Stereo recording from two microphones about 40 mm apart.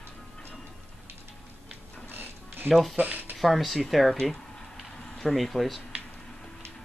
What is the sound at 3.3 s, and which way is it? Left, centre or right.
Speech, centre.